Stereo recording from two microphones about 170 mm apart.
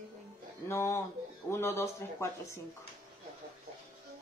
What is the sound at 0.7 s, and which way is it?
Speech, 15° left (ahead or behind).